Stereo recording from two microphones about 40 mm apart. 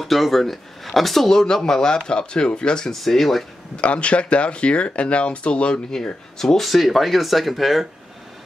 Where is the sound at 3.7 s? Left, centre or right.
Left.